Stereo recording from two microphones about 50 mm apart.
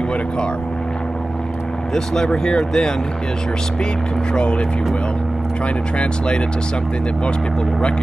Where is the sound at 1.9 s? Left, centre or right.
Centre.